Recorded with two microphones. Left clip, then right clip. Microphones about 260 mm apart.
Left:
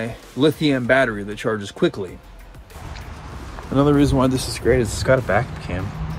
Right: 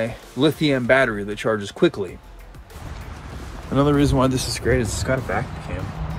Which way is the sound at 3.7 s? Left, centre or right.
Centre.